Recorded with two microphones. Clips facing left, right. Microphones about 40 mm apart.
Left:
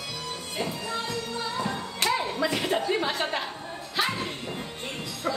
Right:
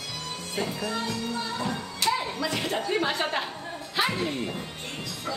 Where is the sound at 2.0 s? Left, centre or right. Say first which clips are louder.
Left 1 dB; centre.